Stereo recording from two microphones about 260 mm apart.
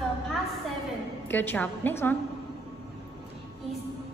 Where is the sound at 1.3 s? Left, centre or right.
Centre.